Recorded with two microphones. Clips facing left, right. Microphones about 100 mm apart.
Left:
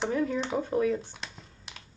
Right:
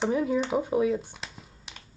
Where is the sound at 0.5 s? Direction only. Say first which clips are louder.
Even; 15° right (ahead or behind).